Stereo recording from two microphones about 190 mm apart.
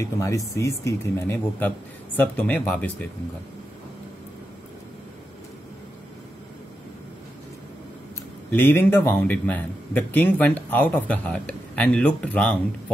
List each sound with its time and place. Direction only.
0.0 s a man's voice: 15° left (ahead or behind)
8.5 s a man's voice: 10° left (ahead or behind)